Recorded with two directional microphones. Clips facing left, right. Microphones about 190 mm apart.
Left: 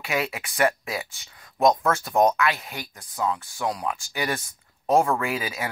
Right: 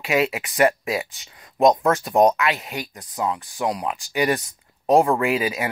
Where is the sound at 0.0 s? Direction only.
20° right (ahead or behind).